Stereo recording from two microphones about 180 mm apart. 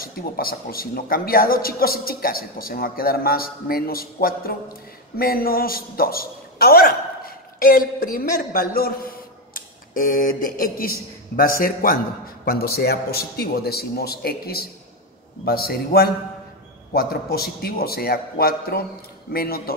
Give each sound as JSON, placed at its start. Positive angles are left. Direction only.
{"t": 0.0, "sound": "a man's voice", "side_deg": 55}